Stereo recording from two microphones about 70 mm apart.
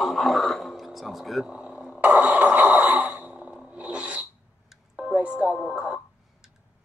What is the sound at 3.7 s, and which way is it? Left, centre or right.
Filing, centre.